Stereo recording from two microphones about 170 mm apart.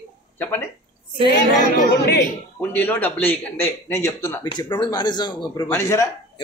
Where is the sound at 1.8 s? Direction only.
85° left.